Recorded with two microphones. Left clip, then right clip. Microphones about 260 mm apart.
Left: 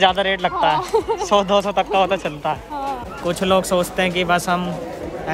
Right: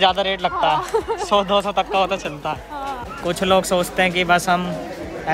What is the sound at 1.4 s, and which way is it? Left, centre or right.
Speech, left.